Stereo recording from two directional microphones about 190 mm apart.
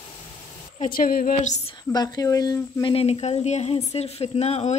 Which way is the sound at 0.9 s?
50° left (ahead or behind).